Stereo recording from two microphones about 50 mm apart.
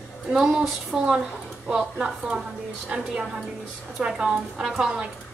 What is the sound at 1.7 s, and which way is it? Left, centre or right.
A woman's voice, centre.